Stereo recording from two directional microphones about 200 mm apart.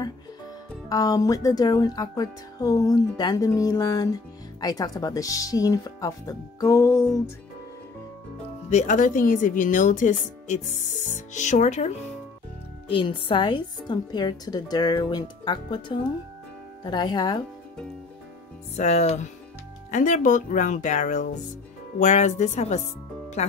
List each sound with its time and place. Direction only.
0.8 s speech: 20° left (ahead or behind)
8.6 s speech: 35° left (ahead or behind)
12.8 s a woman's voice: 25° left (ahead or behind)
18.8 s speech: 30° left (ahead or behind)